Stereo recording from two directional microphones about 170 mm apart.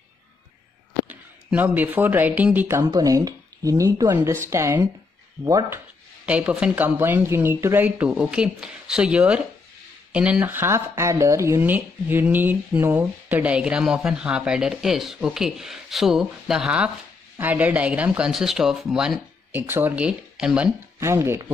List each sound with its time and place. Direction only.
1.0 s speech: 10° right (ahead or behind)
6.2 s speech: 5° right (ahead or behind)